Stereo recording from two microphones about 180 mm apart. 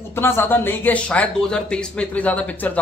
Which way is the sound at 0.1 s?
15° left (ahead or behind).